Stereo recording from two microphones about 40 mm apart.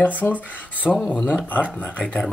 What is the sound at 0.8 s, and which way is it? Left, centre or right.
Speech, left.